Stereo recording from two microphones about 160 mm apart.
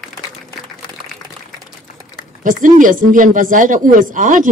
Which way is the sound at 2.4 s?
55° right (ahead or behind).